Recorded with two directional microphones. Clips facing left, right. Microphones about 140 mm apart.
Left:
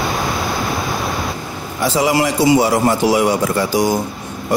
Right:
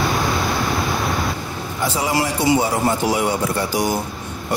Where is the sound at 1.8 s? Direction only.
90° left.